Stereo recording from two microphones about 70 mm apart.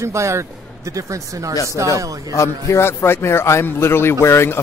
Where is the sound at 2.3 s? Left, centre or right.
Left.